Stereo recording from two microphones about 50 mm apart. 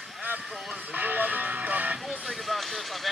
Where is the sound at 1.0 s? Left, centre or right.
Right.